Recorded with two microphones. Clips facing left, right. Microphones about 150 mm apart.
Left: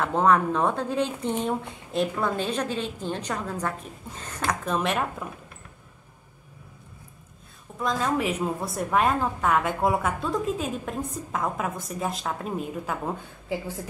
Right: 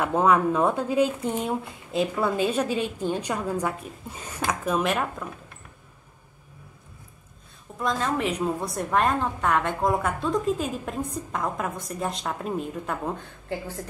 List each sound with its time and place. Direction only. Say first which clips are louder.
0.0 s speech: right 1 dB; 10° right (ahead or behind)
7.8 s a woman's voice: even; centre (ahead or behind)